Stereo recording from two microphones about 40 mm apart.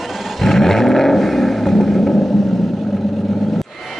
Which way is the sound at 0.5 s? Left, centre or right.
Centre.